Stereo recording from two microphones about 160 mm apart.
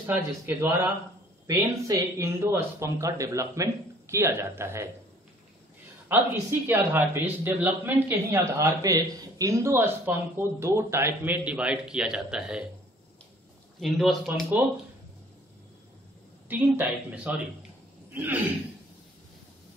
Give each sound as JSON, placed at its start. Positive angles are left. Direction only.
{"t": 0.0, "sound": "speech", "side_deg": -10}
{"t": 6.0, "sound": "speech", "side_deg": -10}
{"t": 13.7, "sound": "speech", "side_deg": 0}
{"t": 16.4, "sound": "speech", "side_deg": -10}